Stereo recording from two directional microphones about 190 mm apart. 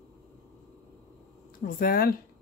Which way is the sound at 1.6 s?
50° left (ahead or behind).